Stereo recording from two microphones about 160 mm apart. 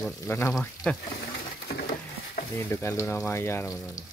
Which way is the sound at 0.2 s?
15° left (ahead or behind).